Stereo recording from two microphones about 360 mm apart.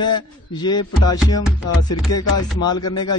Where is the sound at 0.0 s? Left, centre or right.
Centre.